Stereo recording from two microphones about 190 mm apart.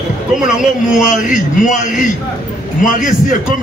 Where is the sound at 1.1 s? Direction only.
45° left (ahead or behind).